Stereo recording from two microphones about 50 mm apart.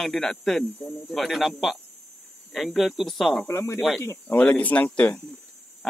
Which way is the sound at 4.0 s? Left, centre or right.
Left.